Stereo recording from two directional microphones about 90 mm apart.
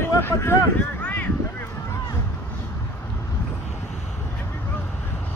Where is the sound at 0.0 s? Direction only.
30° left (ahead or behind).